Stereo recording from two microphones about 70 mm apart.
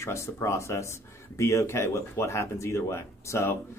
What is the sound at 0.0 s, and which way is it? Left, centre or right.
Speech, left.